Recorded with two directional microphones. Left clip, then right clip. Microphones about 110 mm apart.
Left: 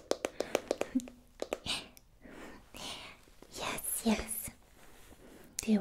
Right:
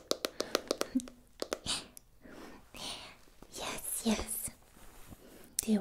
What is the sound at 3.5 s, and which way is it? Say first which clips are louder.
Whispering: left 2 dB; 15° left (ahead or behind).